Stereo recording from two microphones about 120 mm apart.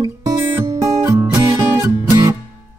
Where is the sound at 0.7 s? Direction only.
70° right (ahead or behind).